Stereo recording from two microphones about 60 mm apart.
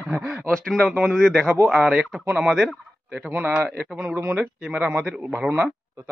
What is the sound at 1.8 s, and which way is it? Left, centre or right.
Speech, centre.